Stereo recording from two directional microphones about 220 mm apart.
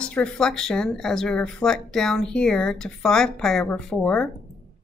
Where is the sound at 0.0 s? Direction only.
5° left (ahead or behind).